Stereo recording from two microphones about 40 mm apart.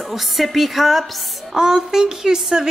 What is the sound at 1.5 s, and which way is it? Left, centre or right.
A woman's voice, centre.